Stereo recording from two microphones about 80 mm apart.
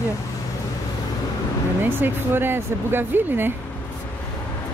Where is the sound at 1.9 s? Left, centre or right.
Right.